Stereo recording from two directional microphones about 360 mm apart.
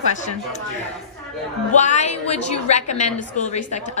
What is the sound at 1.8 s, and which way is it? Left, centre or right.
A woman's voice, centre.